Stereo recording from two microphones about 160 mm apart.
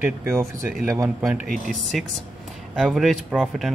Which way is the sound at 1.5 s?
Centre (ahead or behind).